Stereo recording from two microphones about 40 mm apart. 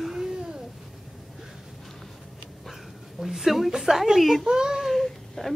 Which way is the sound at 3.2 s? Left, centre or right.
Centre.